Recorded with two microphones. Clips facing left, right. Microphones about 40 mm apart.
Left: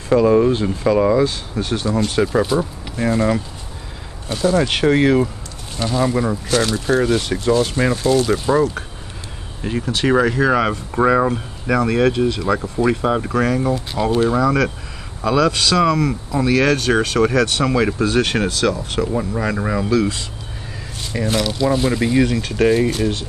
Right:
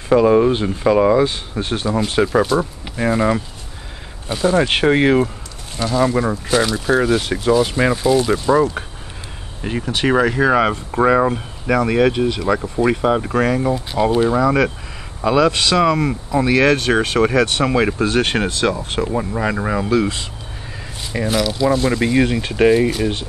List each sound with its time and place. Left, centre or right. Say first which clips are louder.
0.1 s speech: right 1 dB; centre
2.2 s speech: right 3 dB; centre
5.9 s speech: right 2 dB; centre
9.6 s speech: even; centre
18.0 s speech: even; right; by 19.9 s centre
19.9 s speech: even; right
21.1 s speech: right 1 dB; centre
21.4 s speech: right 2 dB; centre
22.0 s speech: even; centre
22.8 s speech: right 1 dB; centre